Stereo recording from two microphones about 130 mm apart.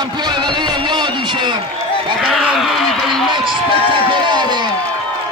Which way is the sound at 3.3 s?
40° right (ahead or behind).